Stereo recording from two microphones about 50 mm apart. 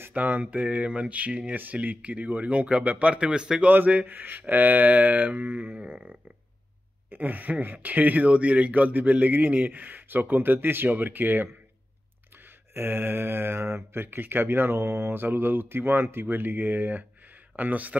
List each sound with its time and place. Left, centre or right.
0.1 s speech: right; by 3.6 s centre
4.0 s speech: right
7.1 s speech: right
12.7 s speech: right
14.0 s speech: right
17.6 s speech: right